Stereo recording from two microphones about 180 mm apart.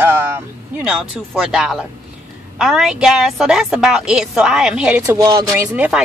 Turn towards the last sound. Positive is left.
turn(degrees=-15)  # may be behind; listen again after turning